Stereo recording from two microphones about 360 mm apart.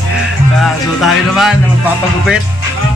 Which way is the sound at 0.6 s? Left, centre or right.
Centre.